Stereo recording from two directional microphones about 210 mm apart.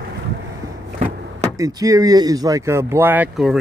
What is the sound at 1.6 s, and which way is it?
Speech, 15° right (ahead or behind).